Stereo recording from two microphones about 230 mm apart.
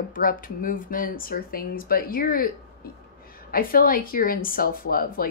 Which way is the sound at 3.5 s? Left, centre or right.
Left.